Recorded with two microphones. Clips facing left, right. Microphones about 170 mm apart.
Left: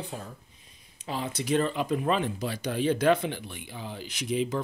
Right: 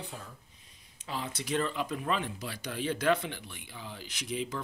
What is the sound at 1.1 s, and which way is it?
Speech, 20° left (ahead or behind).